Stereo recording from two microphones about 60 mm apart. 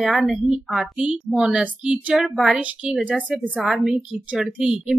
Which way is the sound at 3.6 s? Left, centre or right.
Centre.